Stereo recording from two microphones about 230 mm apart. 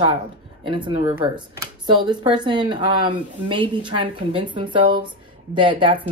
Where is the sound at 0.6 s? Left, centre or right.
Right.